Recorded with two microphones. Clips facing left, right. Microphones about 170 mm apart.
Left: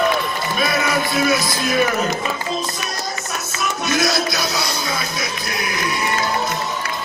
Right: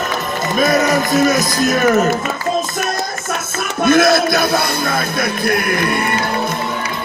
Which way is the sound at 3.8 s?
55° right (ahead or behind).